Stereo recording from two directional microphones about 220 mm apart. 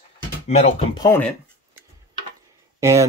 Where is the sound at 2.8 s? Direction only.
15° right (ahead or behind).